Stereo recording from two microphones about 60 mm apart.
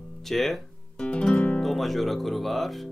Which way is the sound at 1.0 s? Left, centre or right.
Centre.